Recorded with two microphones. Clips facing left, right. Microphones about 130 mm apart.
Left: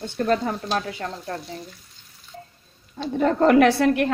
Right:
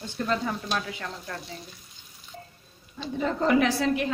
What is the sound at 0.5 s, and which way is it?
Speech, 35° left (ahead or behind).